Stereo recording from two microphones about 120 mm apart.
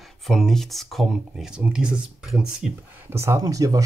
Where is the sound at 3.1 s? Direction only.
20° right (ahead or behind).